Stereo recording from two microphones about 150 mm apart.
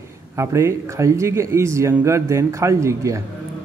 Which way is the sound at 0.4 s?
20° right (ahead or behind).